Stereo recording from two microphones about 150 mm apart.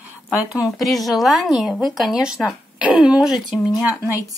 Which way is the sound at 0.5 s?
Centre (ahead or behind).